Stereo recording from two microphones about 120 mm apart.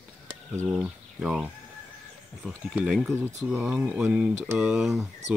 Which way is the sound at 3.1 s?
20° right (ahead or behind).